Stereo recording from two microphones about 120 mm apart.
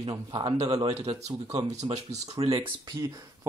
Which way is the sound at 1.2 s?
30° right (ahead or behind).